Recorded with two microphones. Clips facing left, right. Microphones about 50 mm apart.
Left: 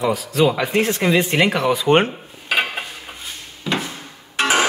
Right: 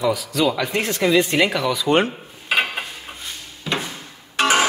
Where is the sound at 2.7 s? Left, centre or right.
Centre.